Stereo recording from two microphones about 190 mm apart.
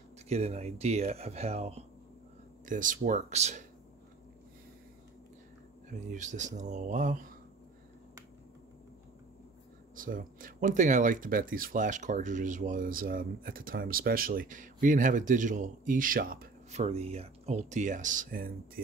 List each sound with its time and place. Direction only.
0.3 s speech: 35° right (ahead or behind)
2.6 s speech: 45° right (ahead or behind)
6.1 s speech: 40° right (ahead or behind)
9.9 s speech: 45° right (ahead or behind)
16.7 s speech: 35° right (ahead or behind)